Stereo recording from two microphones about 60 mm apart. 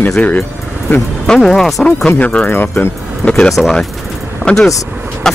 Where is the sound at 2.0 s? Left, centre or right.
Left.